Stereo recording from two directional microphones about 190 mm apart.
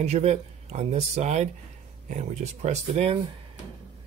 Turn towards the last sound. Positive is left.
turn(degrees=-35)  # may be behind; listen again after turning